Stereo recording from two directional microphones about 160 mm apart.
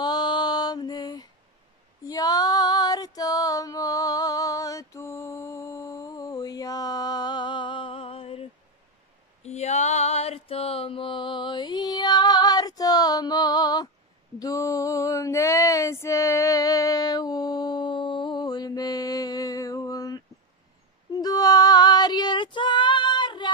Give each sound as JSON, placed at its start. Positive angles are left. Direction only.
{"t": 0.0, "sound": "mantra", "side_deg": 25}
{"t": 2.0, "sound": "female singing", "side_deg": 25}
{"t": 9.4, "sound": "a sound", "side_deg": 45}
{"t": 21.1, "sound": "female singing", "side_deg": 25}